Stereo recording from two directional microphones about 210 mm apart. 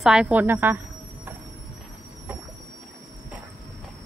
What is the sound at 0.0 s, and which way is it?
Speech, 5° right (ahead or behind).